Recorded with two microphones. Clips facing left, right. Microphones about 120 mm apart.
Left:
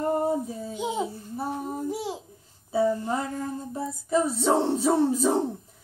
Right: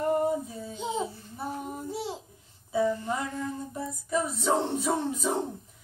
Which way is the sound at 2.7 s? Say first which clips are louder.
Left 3 dB; 35° left (ahead or behind).